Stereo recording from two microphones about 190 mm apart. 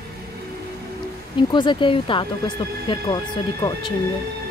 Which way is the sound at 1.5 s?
25° left (ahead or behind).